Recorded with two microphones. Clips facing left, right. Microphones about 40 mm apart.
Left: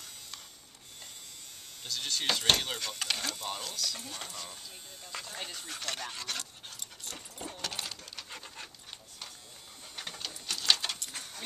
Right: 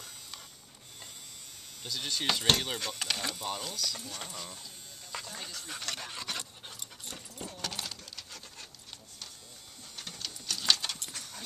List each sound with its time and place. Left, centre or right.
1.9 s speech: centre
5.4 s speech: left
5.7 s speech: centre
7.6 s keys jangling: centre
8.3 s dog: left
9.9 s pigeon: left
10.2 s a sound: centre
10.7 s keys jangling: centre